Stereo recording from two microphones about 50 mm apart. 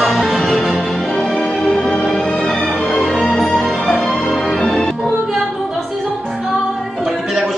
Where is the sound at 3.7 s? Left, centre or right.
Left.